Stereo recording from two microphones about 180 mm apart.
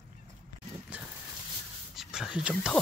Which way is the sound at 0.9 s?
10° right (ahead or behind).